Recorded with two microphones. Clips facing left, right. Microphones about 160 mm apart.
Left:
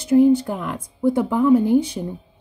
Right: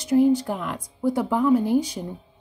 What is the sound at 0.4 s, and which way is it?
A woman's voice, 20° left (ahead or behind).